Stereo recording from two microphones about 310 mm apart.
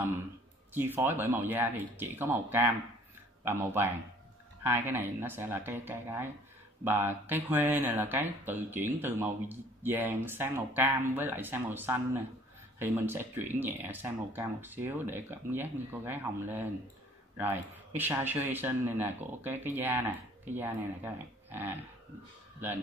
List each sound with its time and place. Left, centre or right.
0.7 s speech: centre